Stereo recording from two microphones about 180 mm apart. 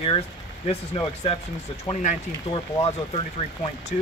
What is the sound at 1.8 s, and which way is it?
Speech, 30° left (ahead or behind).